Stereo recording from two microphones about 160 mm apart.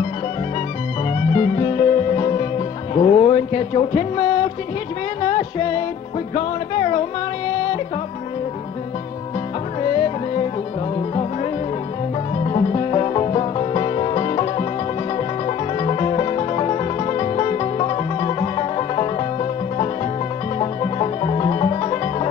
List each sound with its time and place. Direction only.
1.1 s music: 35° left (ahead or behind)
2.9 s speech: 35° left (ahead or behind)
5.2 s music: 35° left (ahead or behind)
9.8 s music: 35° left (ahead or behind)
12.4 s music: 35° left (ahead or behind)
20.5 s music: 35° left (ahead or behind)